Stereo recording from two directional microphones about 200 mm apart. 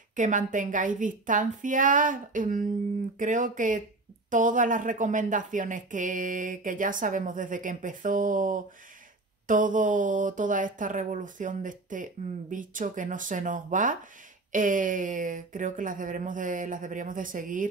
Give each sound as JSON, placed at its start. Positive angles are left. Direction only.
{"t": 0.1, "sound": "speech", "side_deg": -40}